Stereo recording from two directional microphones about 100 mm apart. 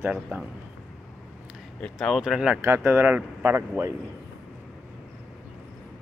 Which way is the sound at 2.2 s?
10° right (ahead or behind).